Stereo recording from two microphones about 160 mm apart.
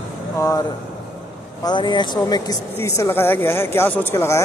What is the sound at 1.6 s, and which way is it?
Speech, 30° left (ahead or behind).